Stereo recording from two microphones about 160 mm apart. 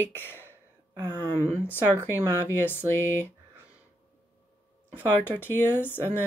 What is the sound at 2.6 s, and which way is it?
Speech, 10° left (ahead or behind).